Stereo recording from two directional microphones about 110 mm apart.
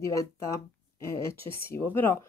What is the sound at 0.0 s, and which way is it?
Speech, 25° left (ahead or behind).